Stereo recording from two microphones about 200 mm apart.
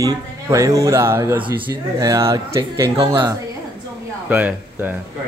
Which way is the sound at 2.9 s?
25° right (ahead or behind).